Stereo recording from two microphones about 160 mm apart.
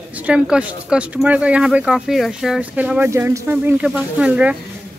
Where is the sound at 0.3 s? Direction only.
5° right (ahead or behind).